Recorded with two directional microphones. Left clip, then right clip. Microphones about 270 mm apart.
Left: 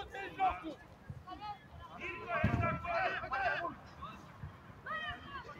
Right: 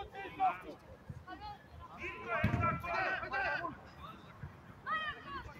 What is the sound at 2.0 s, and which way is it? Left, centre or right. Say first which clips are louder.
Basketball bounce: even; centre.